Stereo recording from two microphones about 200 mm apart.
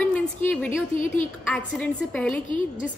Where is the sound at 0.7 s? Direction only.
40° left (ahead or behind).